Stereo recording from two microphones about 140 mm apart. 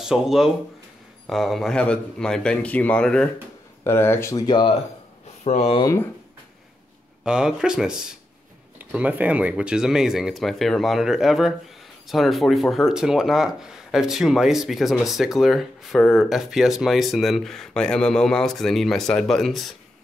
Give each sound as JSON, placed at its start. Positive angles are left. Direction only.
{"t": 0.0, "sound": "speech", "side_deg": -5}
{"t": 3.8, "sound": "speech", "side_deg": 15}
{"t": 5.4, "sound": "speech", "side_deg": 50}
{"t": 7.2, "sound": "speech", "side_deg": -5}